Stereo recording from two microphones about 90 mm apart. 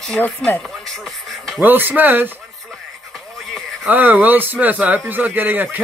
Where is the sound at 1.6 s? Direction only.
20° right (ahead or behind).